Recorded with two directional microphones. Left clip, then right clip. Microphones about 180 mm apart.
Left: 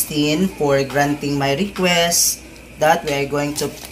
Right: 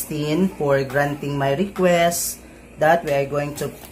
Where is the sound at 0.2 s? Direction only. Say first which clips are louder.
Left 4 dB; 25° right (ahead or behind).